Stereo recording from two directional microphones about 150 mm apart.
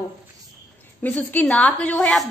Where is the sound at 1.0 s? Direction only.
10° left (ahead or behind).